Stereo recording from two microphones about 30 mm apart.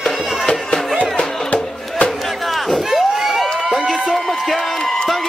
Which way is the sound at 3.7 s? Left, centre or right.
Centre.